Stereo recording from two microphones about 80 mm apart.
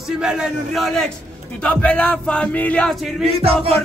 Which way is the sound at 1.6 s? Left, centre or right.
Centre.